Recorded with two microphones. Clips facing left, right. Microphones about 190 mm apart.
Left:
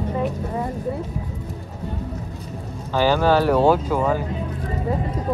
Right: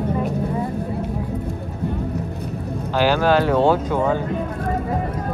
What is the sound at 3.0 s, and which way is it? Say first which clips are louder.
Speech: even; 15° right (ahead or behind).